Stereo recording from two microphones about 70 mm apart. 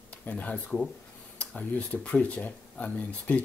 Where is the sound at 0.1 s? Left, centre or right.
Left.